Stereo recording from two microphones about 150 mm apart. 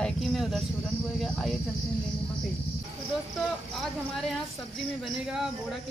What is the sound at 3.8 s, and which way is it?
Speech, centre (ahead or behind).